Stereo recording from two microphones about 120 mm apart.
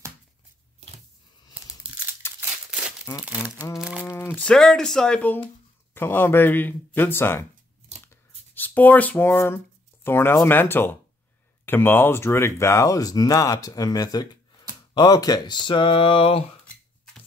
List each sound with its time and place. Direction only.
3.3 s speech: 15° right (ahead or behind)
4.1 s speech: 20° left (ahead or behind)
4.4 s speech: 5° left (ahead or behind)
8.1 s a sound: 15° left (ahead or behind)
10.0 s speech: 20° left (ahead or behind); by 16.4 s 50° left (ahead or behind)
16.6 s a sound: 5° left (ahead or behind)